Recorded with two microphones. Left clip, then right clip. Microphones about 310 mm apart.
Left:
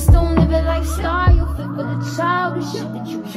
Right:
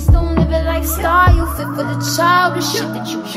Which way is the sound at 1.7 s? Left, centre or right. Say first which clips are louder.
Right 4 dB; right.